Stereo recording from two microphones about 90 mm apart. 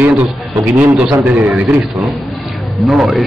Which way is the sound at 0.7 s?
15° right (ahead or behind).